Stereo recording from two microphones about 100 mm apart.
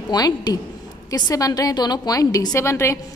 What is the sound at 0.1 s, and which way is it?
A woman's voice, 40° left (ahead or behind).